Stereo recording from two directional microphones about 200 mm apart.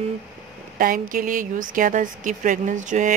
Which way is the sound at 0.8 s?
45° right (ahead or behind).